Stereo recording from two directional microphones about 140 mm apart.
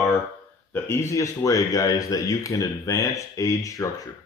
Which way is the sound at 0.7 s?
20° left (ahead or behind).